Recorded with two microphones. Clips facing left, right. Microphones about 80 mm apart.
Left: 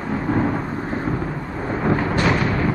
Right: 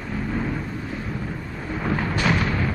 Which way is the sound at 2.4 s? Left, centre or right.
Centre.